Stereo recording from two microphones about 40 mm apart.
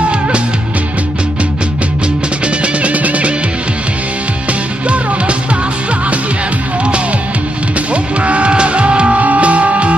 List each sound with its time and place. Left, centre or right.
2.4 s music: right
4.8 s music: right
7.9 s music: right